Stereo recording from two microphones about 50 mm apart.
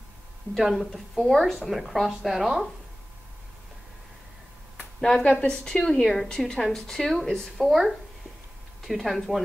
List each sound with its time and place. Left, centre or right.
0.6 s a woman's voice: centre
5.0 s a woman's voice: centre